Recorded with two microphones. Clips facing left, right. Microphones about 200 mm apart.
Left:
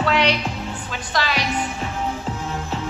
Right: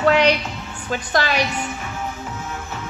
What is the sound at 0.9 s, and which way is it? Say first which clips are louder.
Speech: right 5 dB; 50° right (ahead or behind).